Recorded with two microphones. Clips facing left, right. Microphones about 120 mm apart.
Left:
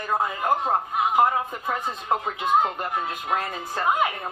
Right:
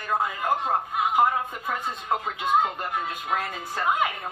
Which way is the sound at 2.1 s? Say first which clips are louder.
Left 2 dB; 5° left (ahead or behind).